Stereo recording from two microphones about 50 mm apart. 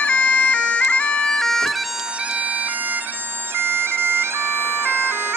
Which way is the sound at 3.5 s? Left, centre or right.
Right.